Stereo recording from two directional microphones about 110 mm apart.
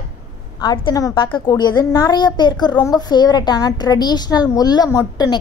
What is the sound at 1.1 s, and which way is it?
A woman's voice, 50° left (ahead or behind).